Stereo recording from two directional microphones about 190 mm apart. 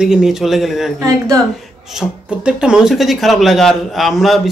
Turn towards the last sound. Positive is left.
turn(degrees=0)  # may be behind; listen again after turning